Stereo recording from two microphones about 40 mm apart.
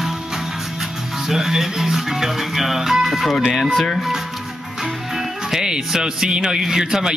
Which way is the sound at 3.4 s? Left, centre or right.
Centre.